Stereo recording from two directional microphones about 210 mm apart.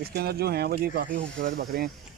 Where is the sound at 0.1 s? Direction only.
50° right (ahead or behind).